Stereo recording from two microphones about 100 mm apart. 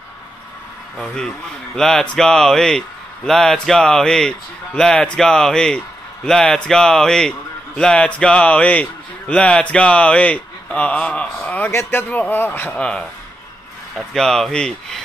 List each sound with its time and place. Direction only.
1.0 s speech: 10° left (ahead or behind)
11.7 s a man's voice: 25° left (ahead or behind); by 15.0 s 5° left (ahead or behind)